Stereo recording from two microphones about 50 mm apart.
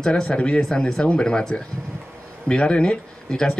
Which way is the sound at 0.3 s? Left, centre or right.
Left.